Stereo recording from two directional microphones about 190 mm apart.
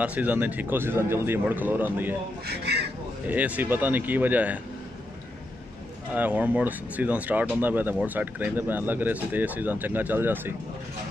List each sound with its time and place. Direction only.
0.0 s speech: 10° right (ahead or behind)
2.4 s speech: 60° right (ahead or behind)
3.3 s speech: 10° right (ahead or behind)
6.1 s speech: 10° right (ahead or behind)